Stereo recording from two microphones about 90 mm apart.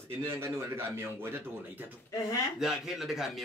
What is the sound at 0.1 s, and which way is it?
A man's voice, 30° right (ahead or behind).